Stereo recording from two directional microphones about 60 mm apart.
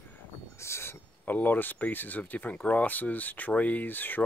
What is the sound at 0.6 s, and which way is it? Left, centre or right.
Owl, left.